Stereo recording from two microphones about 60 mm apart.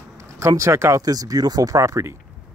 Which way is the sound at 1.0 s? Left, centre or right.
Right.